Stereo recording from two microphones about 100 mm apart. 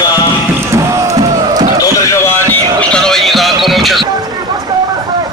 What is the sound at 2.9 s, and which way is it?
Music, 5° left (ahead or behind).